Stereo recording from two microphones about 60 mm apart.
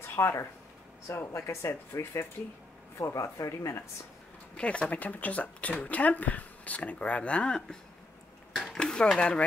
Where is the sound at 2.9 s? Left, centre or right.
Left.